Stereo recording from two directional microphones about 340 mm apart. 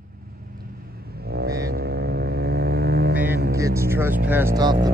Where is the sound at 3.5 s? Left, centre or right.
Centre.